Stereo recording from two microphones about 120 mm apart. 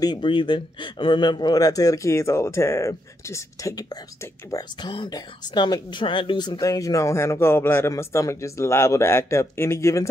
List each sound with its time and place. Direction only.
0.0 s speech: 40° left (ahead or behind); by 10.0 s 25° left (ahead or behind)